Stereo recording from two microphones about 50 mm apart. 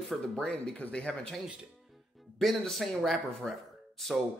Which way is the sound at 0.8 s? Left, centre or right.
Left.